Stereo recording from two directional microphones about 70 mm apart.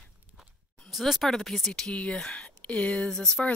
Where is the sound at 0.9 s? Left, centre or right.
Centre.